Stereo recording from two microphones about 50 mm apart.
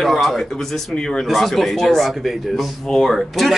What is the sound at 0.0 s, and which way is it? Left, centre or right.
Speech, centre.